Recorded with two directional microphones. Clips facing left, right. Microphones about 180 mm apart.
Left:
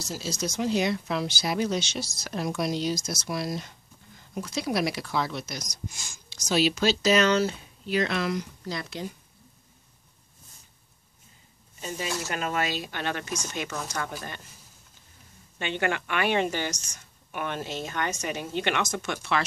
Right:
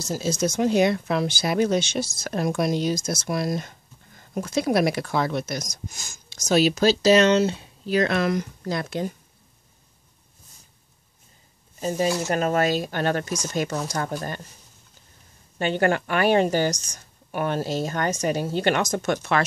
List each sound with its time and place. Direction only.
0.1 s speech: 50° right (ahead or behind)
7.2 s speech: 25° right (ahead or behind)
7.8 s speech: 45° right (ahead or behind)
11.8 s a woman's voice: 40° right (ahead or behind)
15.6 s a woman's voice: 40° right (ahead or behind)